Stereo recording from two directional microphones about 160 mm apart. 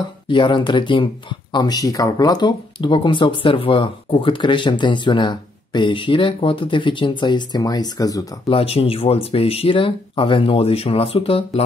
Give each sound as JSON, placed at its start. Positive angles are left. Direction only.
{"t": 0.3, "sound": "speech", "side_deg": 30}
{"t": 8.5, "sound": "speech", "side_deg": 35}